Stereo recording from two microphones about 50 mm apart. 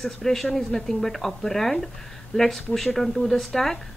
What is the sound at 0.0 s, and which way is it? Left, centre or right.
A woman's voice, centre.